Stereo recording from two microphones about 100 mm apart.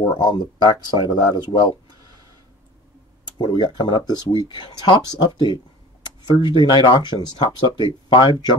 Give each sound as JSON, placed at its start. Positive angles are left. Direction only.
{"t": 0.2, "sound": "speech", "side_deg": 50}
{"t": 3.3, "sound": "speech", "side_deg": 50}